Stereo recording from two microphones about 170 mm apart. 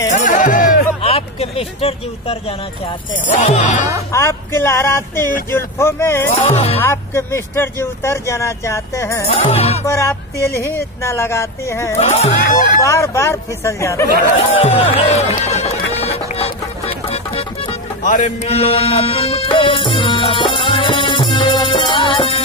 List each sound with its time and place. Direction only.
0.1 s speech: 50° left (ahead or behind)
1.0 s speech: 35° left (ahead or behind)
4.1 s speech: 15° left (ahead or behind)
6.4 s speech: 40° left (ahead or behind)
6.8 s speech: 15° left (ahead or behind)
9.3 s speech: 35° left (ahead or behind)
10.6 s speech: 15° left (ahead or behind)
12.0 s speech: 40° left (ahead or behind)
12.8 s speech: 15° left (ahead or behind)
14.3 s speech: 30° left (ahead or behind)
15.9 s music: 35° left (ahead or behind)
18.0 s music: 45° left (ahead or behind); by 22.4 s 30° left (ahead or behind)